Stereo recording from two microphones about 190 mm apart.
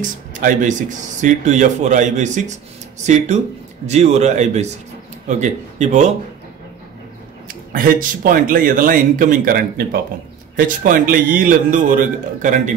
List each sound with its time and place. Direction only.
0.0 s speech: 45° right (ahead or behind)
7.4 s speech: 45° right (ahead or behind)